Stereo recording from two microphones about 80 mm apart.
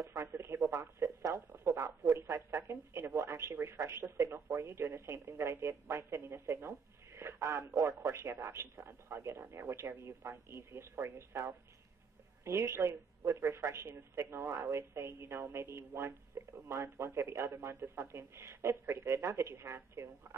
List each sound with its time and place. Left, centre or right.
0.2 s speech: right